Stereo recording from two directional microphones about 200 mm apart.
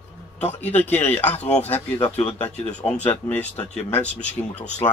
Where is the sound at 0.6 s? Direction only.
10° left (ahead or behind).